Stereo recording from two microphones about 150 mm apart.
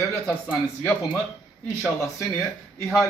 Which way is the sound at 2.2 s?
20° left (ahead or behind).